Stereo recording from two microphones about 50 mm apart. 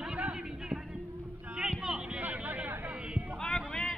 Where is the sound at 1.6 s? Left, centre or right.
Right.